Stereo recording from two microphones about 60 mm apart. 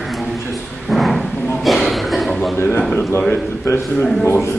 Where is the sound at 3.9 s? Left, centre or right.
Centre.